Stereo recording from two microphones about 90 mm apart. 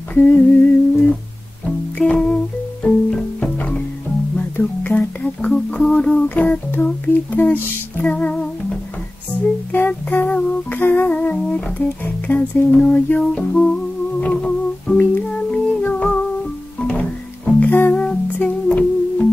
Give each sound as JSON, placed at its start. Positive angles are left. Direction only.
{"t": 0.1, "sound": "humming", "side_deg": 15}
{"t": 2.0, "sound": "music", "side_deg": 10}
{"t": 10.1, "sound": "humming", "side_deg": 15}
{"t": 12.7, "sound": "a sound", "side_deg": 15}
{"t": 13.2, "sound": "music", "side_deg": 10}